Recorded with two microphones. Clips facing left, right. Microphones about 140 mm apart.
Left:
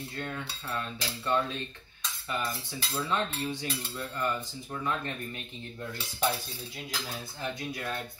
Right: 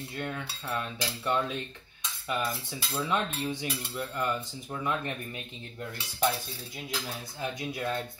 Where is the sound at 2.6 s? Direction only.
20° right (ahead or behind).